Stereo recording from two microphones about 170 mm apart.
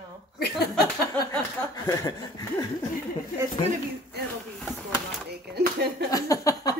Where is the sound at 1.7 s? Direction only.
20° left (ahead or behind).